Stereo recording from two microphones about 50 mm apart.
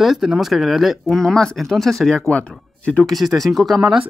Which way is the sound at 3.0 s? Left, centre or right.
Centre.